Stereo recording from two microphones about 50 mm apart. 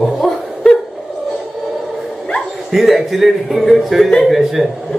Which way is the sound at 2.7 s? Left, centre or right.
Centre.